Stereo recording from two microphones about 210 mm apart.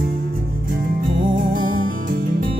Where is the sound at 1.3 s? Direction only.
40° right (ahead or behind).